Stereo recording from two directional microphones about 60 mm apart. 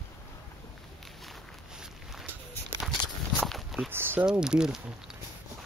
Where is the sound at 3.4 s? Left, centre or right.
Centre.